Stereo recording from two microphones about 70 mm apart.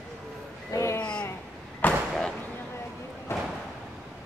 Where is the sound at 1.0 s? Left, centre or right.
Centre.